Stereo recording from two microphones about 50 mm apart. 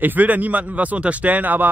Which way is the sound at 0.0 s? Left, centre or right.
Right.